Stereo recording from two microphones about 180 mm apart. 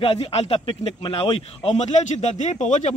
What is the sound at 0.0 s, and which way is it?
Speech, 30° left (ahead or behind).